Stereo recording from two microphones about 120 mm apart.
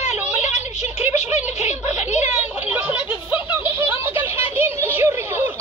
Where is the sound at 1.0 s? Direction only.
65° left (ahead or behind).